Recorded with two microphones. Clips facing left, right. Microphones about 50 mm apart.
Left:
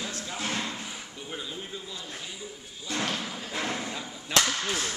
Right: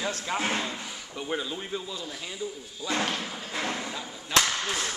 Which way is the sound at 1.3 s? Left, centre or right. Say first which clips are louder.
Right 7 dB; right.